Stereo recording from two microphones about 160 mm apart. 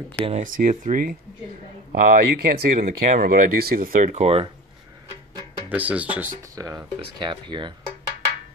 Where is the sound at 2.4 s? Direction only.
70° right (ahead or behind).